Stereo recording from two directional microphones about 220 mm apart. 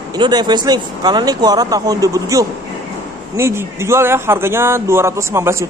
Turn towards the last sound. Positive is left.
turn(degrees=-10)  # may be behind; listen again after turning